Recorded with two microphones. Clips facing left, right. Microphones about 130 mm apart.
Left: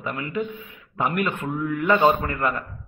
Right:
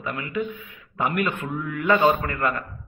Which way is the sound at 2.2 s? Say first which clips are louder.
Even; 20° left (ahead or behind).